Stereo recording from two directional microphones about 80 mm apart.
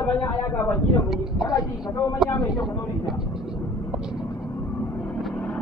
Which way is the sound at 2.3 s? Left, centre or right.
Left.